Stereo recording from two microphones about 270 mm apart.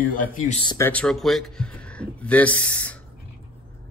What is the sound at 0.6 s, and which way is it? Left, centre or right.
A man's voice, centre.